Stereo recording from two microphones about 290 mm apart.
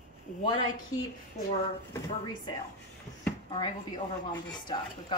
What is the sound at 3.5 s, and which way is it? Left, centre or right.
A woman's voice, centre.